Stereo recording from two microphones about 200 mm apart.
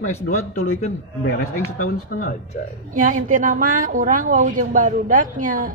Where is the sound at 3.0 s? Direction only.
40° right (ahead or behind).